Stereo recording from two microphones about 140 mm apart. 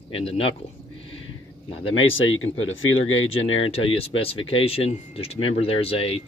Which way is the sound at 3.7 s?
40° left (ahead or behind).